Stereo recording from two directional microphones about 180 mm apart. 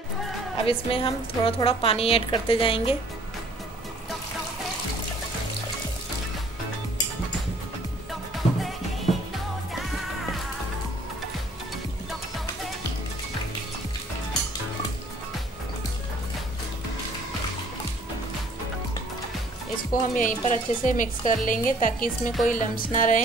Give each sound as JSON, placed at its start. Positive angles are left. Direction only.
{"t": 0.7, "sound": "a woman's voice", "side_deg": 30}
{"t": 8.1, "sound": "music", "side_deg": 0}
{"t": 19.9, "sound": "speech", "side_deg": 45}